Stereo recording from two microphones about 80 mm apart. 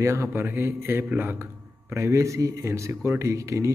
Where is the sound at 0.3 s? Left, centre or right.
Right.